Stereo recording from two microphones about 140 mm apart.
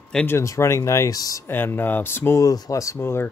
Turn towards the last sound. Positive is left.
turn(degrees=15)  # may be behind; listen again after turning